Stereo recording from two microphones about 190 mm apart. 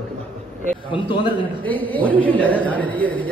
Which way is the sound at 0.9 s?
25° left (ahead or behind).